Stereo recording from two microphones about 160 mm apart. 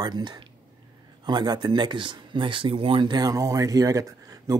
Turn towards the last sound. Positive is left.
turn(degrees=-20)  # may be behind; listen again after turning